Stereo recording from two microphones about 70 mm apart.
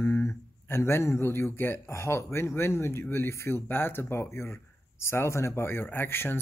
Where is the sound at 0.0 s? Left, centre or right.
Left.